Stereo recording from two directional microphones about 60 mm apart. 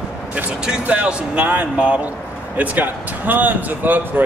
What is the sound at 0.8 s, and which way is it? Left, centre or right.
Speech, right.